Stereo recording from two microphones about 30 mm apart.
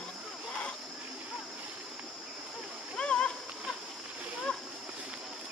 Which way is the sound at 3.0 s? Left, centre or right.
Left.